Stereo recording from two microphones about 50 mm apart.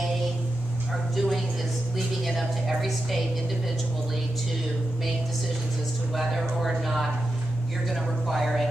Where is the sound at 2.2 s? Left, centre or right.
Centre.